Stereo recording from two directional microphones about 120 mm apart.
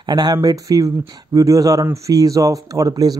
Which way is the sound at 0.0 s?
35° right (ahead or behind).